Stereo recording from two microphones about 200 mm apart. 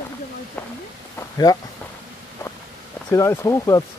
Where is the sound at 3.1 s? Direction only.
15° left (ahead or behind).